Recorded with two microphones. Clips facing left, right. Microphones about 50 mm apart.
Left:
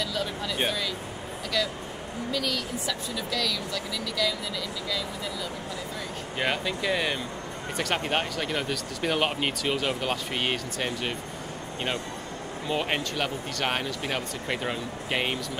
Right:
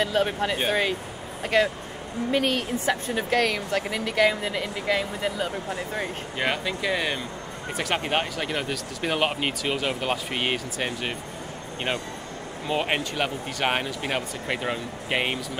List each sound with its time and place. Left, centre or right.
0.0 s speech: right
6.3 s speech: centre
12.6 s speech: centre